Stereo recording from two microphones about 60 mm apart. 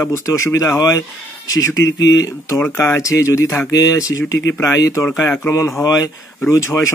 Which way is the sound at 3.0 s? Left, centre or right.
Left.